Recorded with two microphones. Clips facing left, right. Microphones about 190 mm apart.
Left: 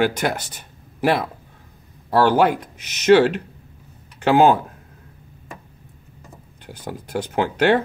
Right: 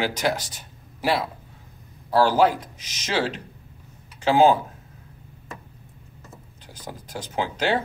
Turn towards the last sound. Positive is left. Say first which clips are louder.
# left 6 dB
turn(degrees=60)  # may be behind; listen again after turning